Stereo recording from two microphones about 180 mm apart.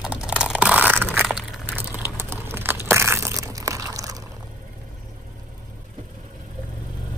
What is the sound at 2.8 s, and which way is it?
Crushing, 15° right (ahead or behind).